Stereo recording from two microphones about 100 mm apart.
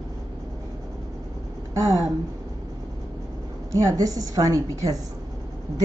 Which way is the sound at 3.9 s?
35° right (ahead or behind).